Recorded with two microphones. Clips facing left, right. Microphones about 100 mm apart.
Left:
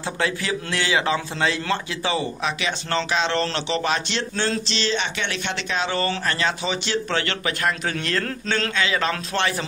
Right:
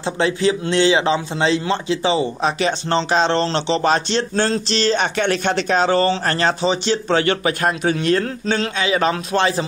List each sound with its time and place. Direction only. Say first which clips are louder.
0.0 s a man's voice: right 7 dB; 25° right (ahead or behind)